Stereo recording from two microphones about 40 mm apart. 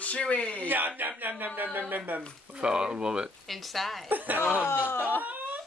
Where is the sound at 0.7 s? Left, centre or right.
Right.